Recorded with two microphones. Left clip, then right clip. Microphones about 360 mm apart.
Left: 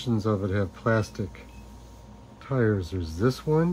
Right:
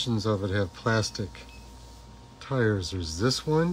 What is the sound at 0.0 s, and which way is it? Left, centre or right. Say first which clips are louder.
Speech: left 1 dB; centre.